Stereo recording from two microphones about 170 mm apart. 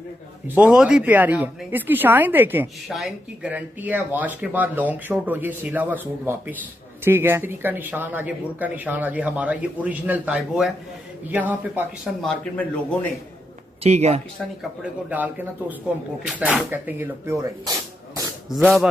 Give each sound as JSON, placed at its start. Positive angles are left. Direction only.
{"t": 0.6, "sound": "speech", "side_deg": -5}
{"t": 2.9, "sound": "speech", "side_deg": 0}
{"t": 12.2, "sound": "speech", "side_deg": 5}
{"t": 13.8, "sound": "speech", "side_deg": -40}
{"t": 14.8, "sound": "speech", "side_deg": -10}
{"t": 18.5, "sound": "speech", "side_deg": 0}